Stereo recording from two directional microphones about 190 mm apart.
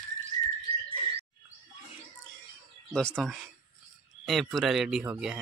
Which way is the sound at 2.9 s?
5° left (ahead or behind).